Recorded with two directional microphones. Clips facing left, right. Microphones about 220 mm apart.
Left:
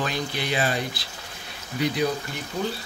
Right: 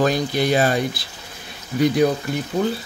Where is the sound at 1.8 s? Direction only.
50° right (ahead or behind).